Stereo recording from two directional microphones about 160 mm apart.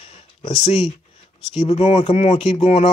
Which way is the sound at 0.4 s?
40° left (ahead or behind).